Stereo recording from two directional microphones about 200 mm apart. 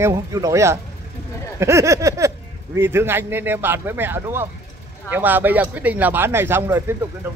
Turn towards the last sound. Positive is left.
turn(degrees=-10)  # may be behind; listen again after turning